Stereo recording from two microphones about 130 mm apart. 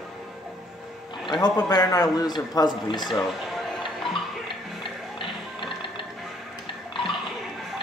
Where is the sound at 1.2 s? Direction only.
35° left (ahead or behind).